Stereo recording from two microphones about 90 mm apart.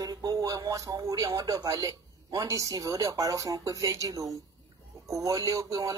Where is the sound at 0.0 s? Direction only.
40° right (ahead or behind).